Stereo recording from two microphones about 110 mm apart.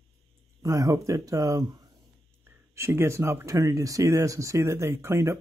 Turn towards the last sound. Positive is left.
turn(degrees=-25)  # may be behind; listen again after turning